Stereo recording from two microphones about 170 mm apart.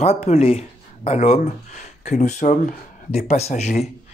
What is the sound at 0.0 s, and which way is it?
Speech, 35° left (ahead or behind).